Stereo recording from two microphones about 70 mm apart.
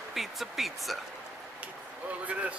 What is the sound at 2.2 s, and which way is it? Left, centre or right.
Speech, centre.